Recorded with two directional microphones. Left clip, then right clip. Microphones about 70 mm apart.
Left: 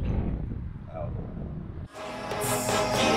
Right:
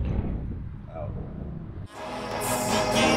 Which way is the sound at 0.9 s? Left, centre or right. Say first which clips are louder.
Even; left.